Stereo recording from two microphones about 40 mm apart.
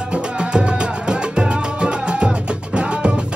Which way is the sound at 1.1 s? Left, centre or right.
Right.